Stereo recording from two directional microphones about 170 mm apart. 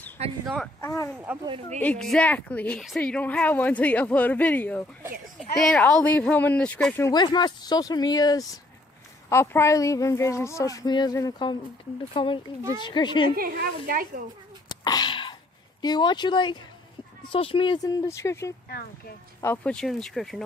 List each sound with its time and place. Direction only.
0.2 s speech: 40° right (ahead or behind)
0.7 s speech: 15° left (ahead or behind)
1.1 s speech: 10° right (ahead or behind)
1.8 s speech: 5° left (ahead or behind)
7.1 s a woman's voice: 25° left (ahead or behind)
13.4 s speech: 60° right (ahead or behind)
14.7 s a sound: 25° left (ahead or behind)
15.8 s a woman's voice: 25° left (ahead or behind)
18.0 s speech: 15° left (ahead or behind)